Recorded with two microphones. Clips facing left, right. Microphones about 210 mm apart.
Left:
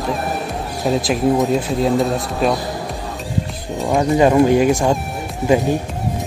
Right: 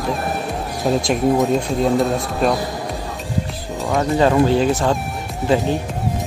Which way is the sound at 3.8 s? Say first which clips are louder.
Left 2 dB; 15° left (ahead or behind).